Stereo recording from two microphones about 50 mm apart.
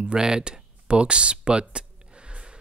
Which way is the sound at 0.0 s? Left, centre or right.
Centre.